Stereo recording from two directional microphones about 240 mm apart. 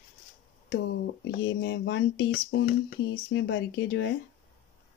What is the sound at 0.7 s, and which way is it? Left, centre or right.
Speech, left.